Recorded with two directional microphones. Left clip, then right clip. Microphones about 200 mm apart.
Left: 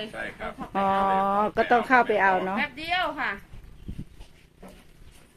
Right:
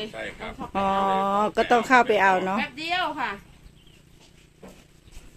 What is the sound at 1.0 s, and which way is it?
Speech, centre (ahead or behind).